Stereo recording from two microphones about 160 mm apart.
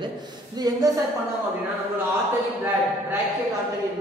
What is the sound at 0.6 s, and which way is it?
Speech, 25° right (ahead or behind).